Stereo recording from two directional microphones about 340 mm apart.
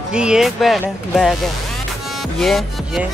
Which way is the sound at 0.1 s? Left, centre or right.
Centre.